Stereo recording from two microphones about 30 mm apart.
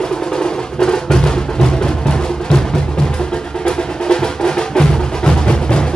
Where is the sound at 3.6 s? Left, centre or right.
Left.